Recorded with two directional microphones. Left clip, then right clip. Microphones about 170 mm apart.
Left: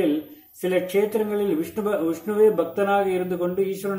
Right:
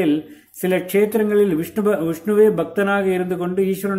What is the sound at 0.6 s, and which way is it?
Speech, 35° right (ahead or behind).